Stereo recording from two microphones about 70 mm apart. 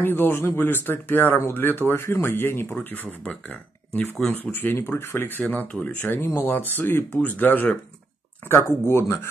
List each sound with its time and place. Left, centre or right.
0.0 s speech: left
8.6 s speech: left